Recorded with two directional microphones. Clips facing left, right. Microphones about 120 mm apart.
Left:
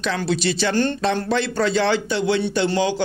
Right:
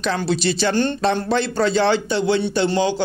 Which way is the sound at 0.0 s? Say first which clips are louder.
Right 1 dB; 35° right (ahead or behind).